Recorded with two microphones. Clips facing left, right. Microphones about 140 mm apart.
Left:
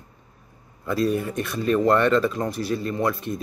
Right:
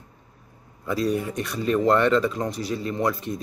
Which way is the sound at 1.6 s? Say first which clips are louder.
Left 1 dB; 20° right (ahead or behind).